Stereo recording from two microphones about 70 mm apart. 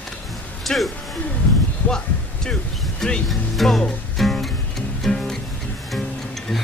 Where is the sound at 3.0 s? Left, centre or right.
Centre.